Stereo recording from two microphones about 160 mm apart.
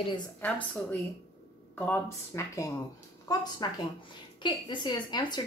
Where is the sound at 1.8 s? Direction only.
15° left (ahead or behind).